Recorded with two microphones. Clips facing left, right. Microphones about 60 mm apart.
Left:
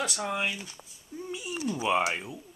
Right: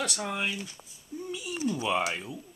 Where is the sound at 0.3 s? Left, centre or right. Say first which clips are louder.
Left 1 dB; centre.